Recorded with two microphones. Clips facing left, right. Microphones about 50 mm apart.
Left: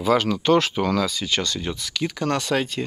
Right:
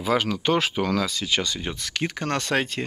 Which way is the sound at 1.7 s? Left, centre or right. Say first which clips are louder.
Left 2 dB; right.